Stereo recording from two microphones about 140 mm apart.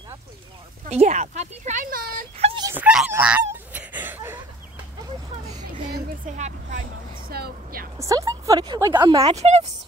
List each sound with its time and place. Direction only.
0.8 s speech: 55° right (ahead or behind); by 2.2 s 90° right
2.3 s dog: 45° right (ahead or behind)
2.7 s dog: 10° right (ahead or behind)
3.1 s goose: 10° right (ahead or behind)
6.2 s speech: 60° right (ahead or behind)
7.2 s a woman's voice: 90° right
8.0 s speech: 25° right (ahead or behind)
9.2 s a woman's voice: 50° right (ahead or behind)